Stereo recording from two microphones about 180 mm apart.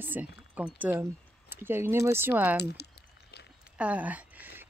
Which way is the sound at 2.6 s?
65° left (ahead or behind).